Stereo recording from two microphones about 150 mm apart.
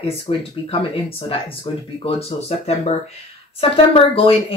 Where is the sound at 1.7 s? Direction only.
40° left (ahead or behind).